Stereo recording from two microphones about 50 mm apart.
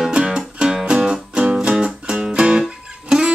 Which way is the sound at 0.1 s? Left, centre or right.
Centre.